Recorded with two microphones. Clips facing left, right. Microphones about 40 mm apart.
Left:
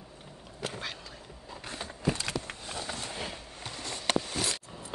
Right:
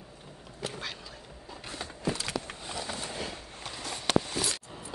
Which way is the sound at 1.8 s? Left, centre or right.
Centre.